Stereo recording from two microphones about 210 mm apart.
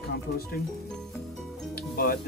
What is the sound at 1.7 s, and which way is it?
Music, 45° left (ahead or behind).